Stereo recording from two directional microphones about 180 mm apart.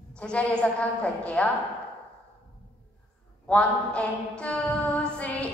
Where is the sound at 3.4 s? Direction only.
5° left (ahead or behind).